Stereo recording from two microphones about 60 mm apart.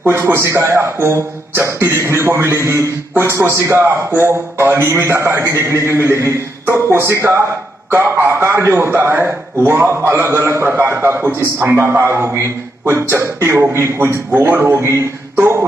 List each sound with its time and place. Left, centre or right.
0.0 s speech: right
7.9 s a man's voice: right